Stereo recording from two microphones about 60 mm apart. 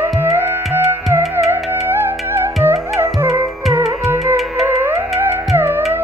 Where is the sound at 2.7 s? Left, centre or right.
Right.